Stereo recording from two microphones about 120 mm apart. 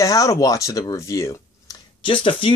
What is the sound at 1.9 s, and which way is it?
Speech, 45° left (ahead or behind).